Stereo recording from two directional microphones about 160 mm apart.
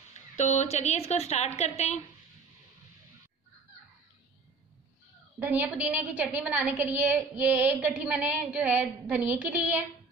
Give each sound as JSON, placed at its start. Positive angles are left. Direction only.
{"t": 0.1, "sound": "a woman's voice", "side_deg": 45}
{"t": 5.4, "sound": "a woman's voice", "side_deg": -10}